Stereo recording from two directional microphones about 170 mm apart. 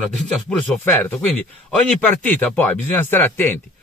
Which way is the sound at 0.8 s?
15° left (ahead or behind).